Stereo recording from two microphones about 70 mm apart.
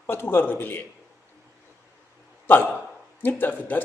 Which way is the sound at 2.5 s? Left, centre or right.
Left.